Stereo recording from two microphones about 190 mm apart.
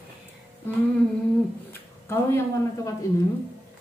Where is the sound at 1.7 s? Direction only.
15° left (ahead or behind).